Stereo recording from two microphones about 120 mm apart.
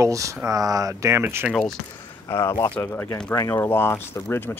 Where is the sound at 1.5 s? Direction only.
5° left (ahead or behind).